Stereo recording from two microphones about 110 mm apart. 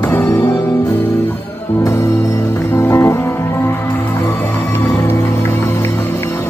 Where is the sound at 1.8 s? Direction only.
30° left (ahead or behind).